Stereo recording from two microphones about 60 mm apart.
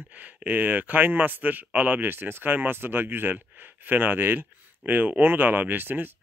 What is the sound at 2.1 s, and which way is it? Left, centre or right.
Speech, right.